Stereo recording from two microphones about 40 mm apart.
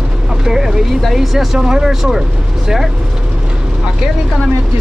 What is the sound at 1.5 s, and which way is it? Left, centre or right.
Speech, centre.